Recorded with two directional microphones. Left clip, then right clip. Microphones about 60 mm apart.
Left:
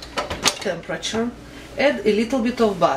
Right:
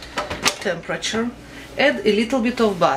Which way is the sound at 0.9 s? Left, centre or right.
Right.